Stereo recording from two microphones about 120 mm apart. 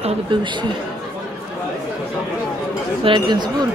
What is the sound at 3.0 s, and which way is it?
Speech, 40° right (ahead or behind).